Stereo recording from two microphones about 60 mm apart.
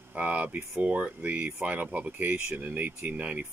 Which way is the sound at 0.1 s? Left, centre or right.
Right.